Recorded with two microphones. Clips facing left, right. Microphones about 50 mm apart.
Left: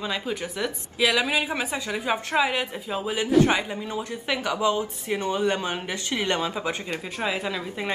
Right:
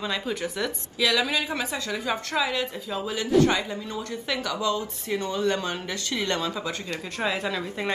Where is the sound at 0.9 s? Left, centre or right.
Centre.